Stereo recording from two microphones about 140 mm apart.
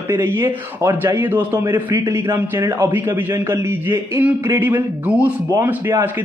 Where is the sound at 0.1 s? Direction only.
15° right (ahead or behind).